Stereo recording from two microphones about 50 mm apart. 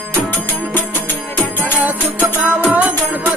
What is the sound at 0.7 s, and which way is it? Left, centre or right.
Music, left.